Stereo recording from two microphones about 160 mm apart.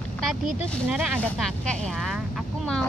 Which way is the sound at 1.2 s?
5° left (ahead or behind).